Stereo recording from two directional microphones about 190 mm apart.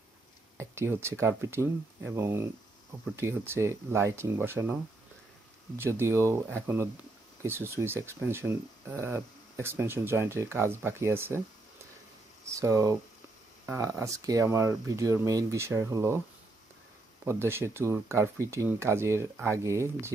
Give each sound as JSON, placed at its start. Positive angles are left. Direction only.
{"t": 0.6, "sound": "speech", "side_deg": -15}
{"t": 5.8, "sound": "speech", "side_deg": -15}
{"t": 12.4, "sound": "speech", "side_deg": -15}
{"t": 17.2, "sound": "speech", "side_deg": -10}